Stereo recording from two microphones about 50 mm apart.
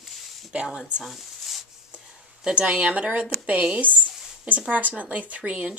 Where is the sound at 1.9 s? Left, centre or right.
Centre.